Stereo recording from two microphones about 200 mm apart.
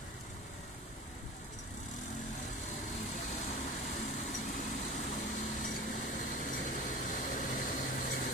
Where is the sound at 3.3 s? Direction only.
35° left (ahead or behind).